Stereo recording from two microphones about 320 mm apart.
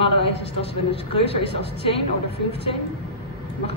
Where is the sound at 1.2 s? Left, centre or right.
Centre.